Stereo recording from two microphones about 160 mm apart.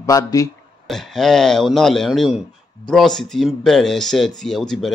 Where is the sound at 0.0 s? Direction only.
20° left (ahead or behind).